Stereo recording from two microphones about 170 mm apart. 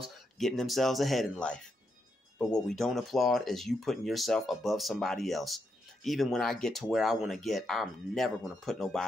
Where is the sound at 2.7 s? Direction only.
Centre (ahead or behind).